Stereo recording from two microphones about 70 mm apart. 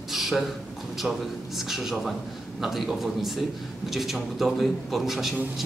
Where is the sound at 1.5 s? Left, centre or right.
Centre.